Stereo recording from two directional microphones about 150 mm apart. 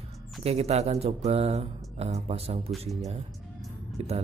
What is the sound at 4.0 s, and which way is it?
Speech, 45° right (ahead or behind).